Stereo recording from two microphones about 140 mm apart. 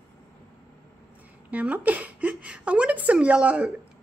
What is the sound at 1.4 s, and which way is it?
A woman's voice, 10° right (ahead or behind).